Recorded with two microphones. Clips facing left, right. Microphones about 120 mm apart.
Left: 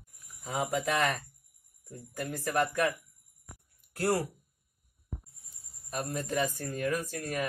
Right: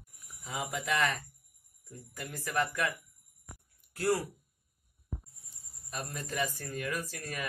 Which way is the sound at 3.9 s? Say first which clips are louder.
Left 1 dB; 55° left (ahead or behind).